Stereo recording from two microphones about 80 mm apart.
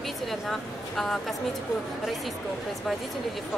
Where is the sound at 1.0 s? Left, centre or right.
Centre.